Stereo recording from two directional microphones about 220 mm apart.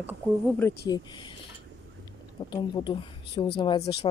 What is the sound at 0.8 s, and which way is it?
Speech, 20° left (ahead or behind).